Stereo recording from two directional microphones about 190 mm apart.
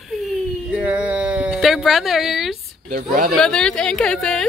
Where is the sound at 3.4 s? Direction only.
5° left (ahead or behind).